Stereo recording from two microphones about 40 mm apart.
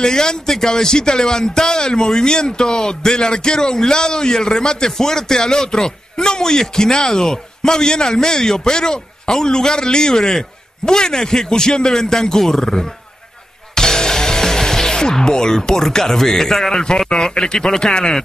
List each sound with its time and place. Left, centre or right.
0.0 s speech: centre
13.7 s music: centre
17.4 s speech: centre